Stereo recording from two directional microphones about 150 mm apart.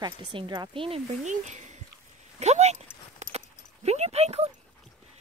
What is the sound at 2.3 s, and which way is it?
Clip-clop, 50° right (ahead or behind).